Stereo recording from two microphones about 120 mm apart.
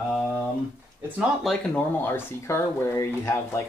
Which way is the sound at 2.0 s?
20° left (ahead or behind).